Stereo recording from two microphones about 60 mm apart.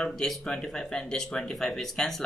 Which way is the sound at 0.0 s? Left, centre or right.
Centre.